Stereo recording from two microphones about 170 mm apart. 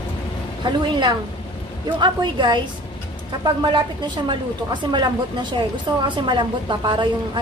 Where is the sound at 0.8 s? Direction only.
25° right (ahead or behind).